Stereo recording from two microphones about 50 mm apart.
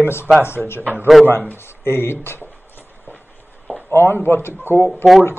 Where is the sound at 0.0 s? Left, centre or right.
Left.